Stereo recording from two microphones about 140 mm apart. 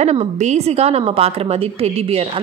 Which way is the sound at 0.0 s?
55° right (ahead or behind).